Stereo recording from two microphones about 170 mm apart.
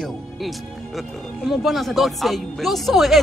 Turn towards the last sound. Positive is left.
turn(degrees=0)  # may be behind; listen again after turning